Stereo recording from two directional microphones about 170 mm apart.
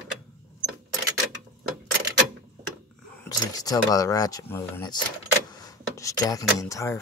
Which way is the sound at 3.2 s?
20° left (ahead or behind).